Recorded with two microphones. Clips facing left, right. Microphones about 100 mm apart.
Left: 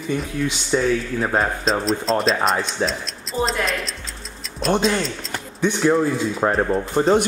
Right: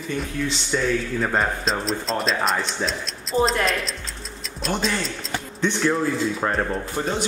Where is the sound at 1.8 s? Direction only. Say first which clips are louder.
Left 5 dB; centre (ahead or behind).